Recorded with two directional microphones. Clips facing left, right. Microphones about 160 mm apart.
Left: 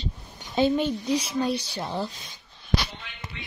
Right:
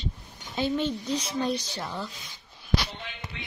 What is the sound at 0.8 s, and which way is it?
Speech, 10° left (ahead or behind).